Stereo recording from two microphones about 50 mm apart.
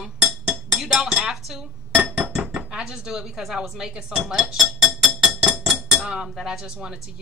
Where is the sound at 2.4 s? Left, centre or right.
Right.